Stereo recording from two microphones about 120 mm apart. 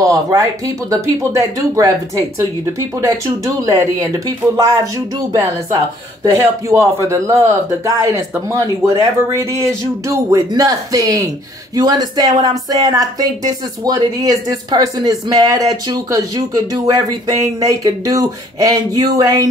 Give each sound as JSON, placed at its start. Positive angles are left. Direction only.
{"t": 0.3, "sound": "speech", "side_deg": -25}
{"t": 2.6, "sound": "speech", "side_deg": -25}